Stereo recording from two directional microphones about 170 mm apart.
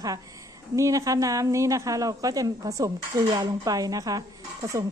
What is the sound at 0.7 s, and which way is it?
A woman's voice, 20° right (ahead or behind).